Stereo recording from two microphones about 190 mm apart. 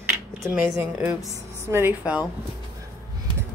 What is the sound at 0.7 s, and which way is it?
Speech, 5° right (ahead or behind).